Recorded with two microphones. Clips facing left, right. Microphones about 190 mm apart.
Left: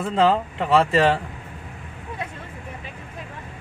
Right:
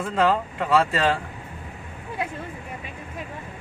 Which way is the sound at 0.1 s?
25° left (ahead or behind).